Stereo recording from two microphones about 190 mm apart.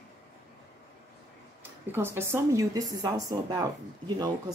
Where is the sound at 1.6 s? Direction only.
10° right (ahead or behind).